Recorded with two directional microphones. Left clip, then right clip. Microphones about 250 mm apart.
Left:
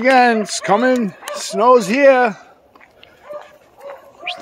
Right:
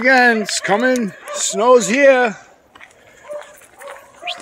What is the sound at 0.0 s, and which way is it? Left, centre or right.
Speech, centre.